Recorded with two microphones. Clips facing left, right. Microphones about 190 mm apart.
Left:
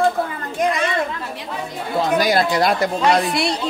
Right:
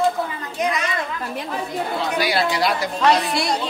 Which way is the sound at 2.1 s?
45° left (ahead or behind).